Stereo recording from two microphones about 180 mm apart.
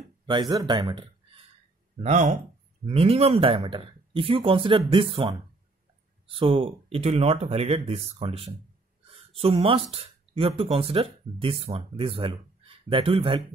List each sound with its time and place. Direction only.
0.3 s speech: 25° right (ahead or behind)
2.0 s speech: 40° right (ahead or behind)